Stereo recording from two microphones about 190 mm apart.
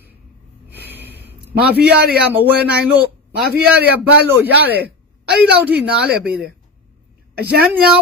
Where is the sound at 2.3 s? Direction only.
10° right (ahead or behind).